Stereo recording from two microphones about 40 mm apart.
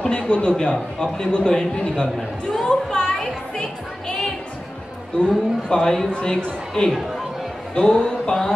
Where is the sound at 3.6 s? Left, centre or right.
Left.